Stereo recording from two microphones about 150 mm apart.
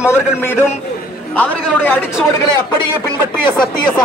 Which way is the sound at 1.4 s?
15° left (ahead or behind).